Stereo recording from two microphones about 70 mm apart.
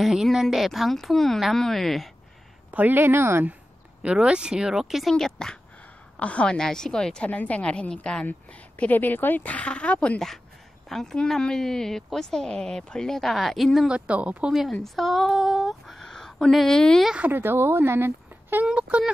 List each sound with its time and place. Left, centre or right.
0.0 s speech: centre
2.7 s speech: right
4.0 s speech: centre
5.1 s a woman's voice: centre
13.8 s speech: centre
14.7 s speech: centre
17.3 s speech: right
18.7 s speech: centre